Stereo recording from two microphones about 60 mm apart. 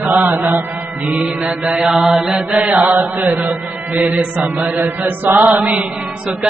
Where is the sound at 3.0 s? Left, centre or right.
Right.